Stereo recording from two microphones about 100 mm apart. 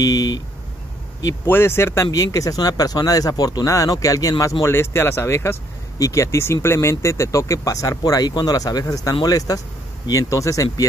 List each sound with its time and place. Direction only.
0.0 s speech: 40° left (ahead or behind)
1.5 s speech: 25° left (ahead or behind)
2.0 s speech: 35° left (ahead or behind)